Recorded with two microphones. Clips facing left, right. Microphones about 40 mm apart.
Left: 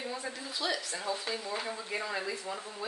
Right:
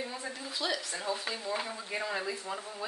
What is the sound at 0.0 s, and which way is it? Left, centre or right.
A woman's voice, centre.